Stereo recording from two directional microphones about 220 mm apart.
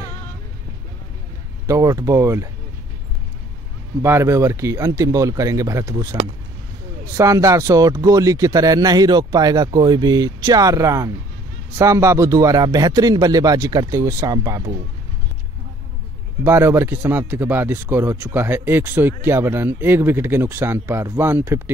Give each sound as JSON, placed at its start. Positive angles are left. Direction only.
{"t": 1.7, "sound": "a man's voice", "side_deg": -15}
{"t": 4.0, "sound": "a man's voice", "side_deg": -10}
{"t": 7.2, "sound": "a man's voice", "side_deg": -15}
{"t": 16.4, "sound": "a man's voice", "side_deg": -10}